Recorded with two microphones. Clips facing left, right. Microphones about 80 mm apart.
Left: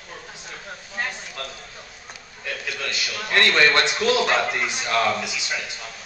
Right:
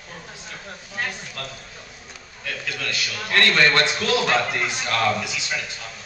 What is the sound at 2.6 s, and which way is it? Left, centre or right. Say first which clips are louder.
A man's voice: right 1 dB; centre.